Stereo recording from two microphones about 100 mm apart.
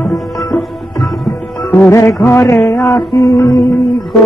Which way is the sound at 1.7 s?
25° left (ahead or behind).